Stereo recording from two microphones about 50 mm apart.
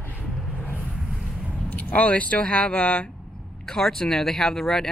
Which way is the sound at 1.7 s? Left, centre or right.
Left.